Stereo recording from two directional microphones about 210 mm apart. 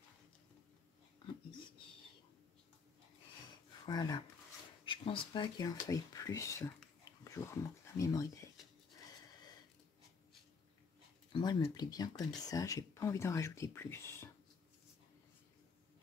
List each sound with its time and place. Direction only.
3.8 s speech: 20° left (ahead or behind)
11.3 s speech: 20° left (ahead or behind)